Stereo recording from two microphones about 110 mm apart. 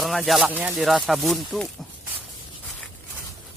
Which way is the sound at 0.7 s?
Centre (ahead or behind).